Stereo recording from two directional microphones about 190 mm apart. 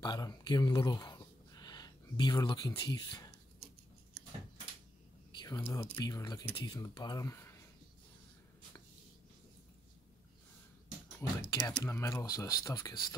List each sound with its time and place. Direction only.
0.0 s speech: 20° left (ahead or behind)
5.4 s speech: 20° left (ahead or behind)
11.2 s speech: 15° left (ahead or behind)